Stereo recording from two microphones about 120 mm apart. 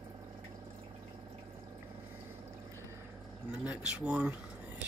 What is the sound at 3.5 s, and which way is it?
Speech, 5° right (ahead or behind).